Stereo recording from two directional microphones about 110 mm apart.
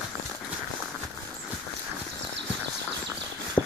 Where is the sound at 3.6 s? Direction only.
10° left (ahead or behind).